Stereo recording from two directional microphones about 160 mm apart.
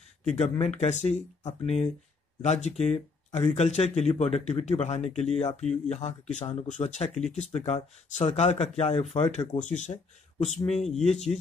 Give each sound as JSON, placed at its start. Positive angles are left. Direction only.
{"t": 0.3, "sound": "speech", "side_deg": 45}